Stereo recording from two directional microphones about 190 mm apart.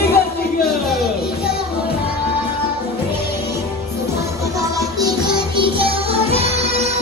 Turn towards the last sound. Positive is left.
turn(degrees=-30)  # may be behind; listen again after turning